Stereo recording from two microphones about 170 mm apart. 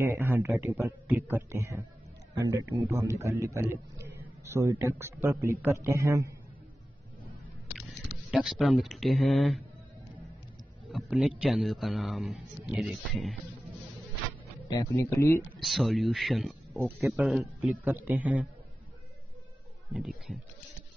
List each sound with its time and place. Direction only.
0.1 s a man's voice: 15° right (ahead or behind)
8.3 s a man's voice: centre (ahead or behind)
10.9 s a man's voice: 5° right (ahead or behind)
14.7 s speech: 20° left (ahead or behind)
15.6 s a man's voice: centre (ahead or behind)
19.9 s a man's voice: centre (ahead or behind)